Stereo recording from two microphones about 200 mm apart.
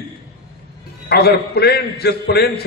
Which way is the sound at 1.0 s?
55° left (ahead or behind).